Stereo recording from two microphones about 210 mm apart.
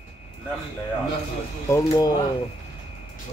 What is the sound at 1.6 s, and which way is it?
Speech, 15° left (ahead or behind).